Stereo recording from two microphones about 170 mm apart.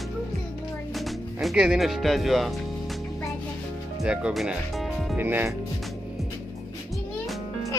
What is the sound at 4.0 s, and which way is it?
Speech, 5° right (ahead or behind).